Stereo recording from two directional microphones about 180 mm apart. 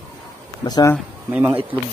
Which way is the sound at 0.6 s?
25° left (ahead or behind).